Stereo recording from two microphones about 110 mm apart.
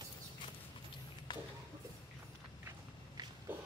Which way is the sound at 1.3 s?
45° left (ahead or behind).